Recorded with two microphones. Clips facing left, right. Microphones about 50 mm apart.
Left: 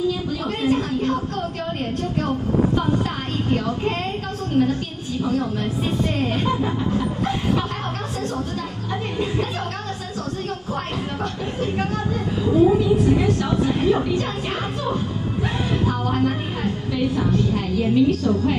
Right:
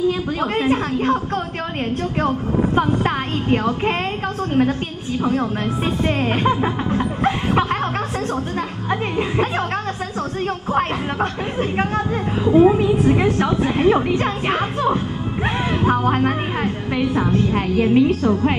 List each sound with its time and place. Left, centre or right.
0.4 s a woman's voice: right
2.2 s a woman's voice: right
10.7 s music: right
12.4 s a woman's voice: right